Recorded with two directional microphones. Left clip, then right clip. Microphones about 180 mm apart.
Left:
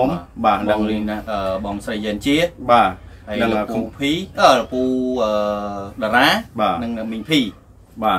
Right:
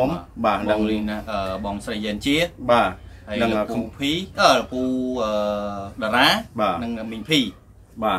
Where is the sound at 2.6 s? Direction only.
10° left (ahead or behind).